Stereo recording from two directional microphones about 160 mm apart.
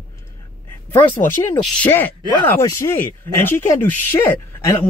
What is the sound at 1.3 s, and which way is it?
Speech, 15° left (ahead or behind).